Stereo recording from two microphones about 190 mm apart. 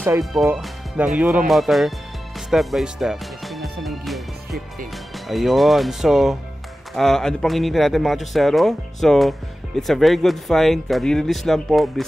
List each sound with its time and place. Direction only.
0.2 s speech: centre (ahead or behind)
3.8 s music: centre (ahead or behind)
4.9 s speech: centre (ahead or behind)